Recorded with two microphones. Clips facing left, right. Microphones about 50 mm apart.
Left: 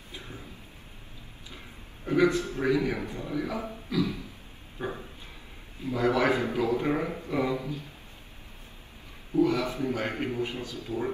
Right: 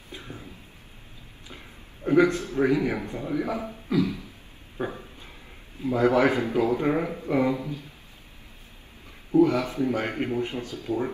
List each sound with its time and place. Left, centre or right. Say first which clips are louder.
2.0 s a man's voice: right 3 dB; right
9.3 s speech: right 4 dB; right